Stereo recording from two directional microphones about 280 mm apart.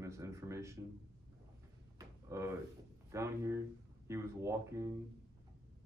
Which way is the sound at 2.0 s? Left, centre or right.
Centre.